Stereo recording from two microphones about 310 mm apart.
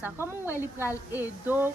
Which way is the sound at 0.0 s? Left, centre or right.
Centre.